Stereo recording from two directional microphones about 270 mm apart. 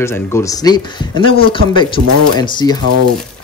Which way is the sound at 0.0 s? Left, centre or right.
Centre.